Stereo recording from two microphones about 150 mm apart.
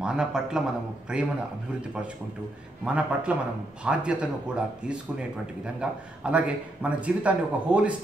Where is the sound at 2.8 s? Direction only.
5° right (ahead or behind).